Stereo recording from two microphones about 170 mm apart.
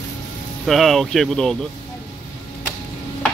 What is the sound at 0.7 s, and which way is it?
Speech, centre (ahead or behind).